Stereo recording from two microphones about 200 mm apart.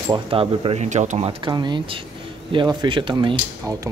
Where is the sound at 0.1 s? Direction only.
25° right (ahead or behind).